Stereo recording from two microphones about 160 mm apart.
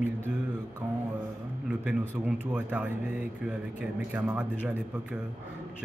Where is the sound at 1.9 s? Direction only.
10° right (ahead or behind).